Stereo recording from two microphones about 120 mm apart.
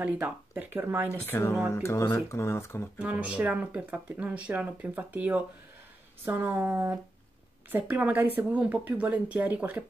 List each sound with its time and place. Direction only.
0.0 s speech: 15° right (ahead or behind)
1.2 s speech: 20° left (ahead or behind)
3.0 s speech: 10° right (ahead or behind)